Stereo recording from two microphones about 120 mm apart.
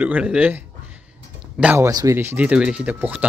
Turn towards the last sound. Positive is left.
turn(degrees=-15)  # may be behind; listen again after turning